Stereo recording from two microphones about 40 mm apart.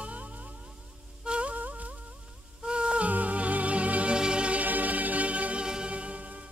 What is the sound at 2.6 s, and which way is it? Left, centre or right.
Music, right.